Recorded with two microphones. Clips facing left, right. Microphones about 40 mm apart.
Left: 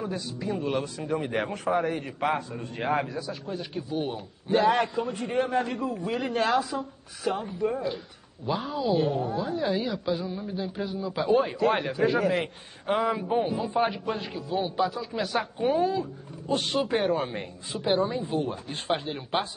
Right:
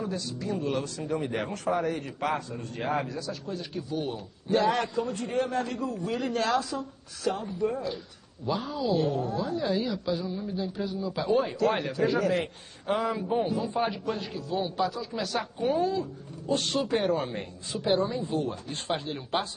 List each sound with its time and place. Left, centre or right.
0.0 s a man's voice: centre
18.0 s a man's voice: centre